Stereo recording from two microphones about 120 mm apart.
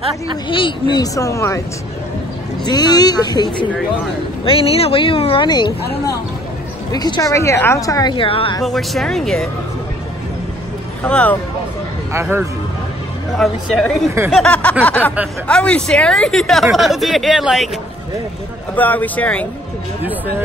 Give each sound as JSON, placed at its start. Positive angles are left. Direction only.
{"t": 0.5, "sound": "speech", "side_deg": 45}
{"t": 2.6, "sound": "a woman's voice", "side_deg": 35}
{"t": 4.5, "sound": "a woman's voice", "side_deg": 55}
{"t": 8.6, "sound": "speech", "side_deg": 0}
{"t": 11.1, "sound": "a sound", "side_deg": 10}
{"t": 12.1, "sound": "speech", "side_deg": -20}
{"t": 13.4, "sound": "speech", "side_deg": 0}
{"t": 14.3, "sound": "a sound", "side_deg": 10}
{"t": 15.4, "sound": "speech", "side_deg": 10}
{"t": 18.8, "sound": "a sound", "side_deg": 15}
{"t": 20.0, "sound": "speech", "side_deg": -15}